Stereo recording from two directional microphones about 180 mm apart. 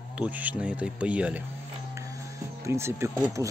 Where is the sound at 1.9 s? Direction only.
20° right (ahead or behind).